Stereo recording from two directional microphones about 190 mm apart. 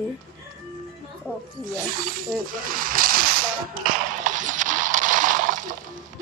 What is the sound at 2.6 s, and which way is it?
Music, 45° right (ahead or behind).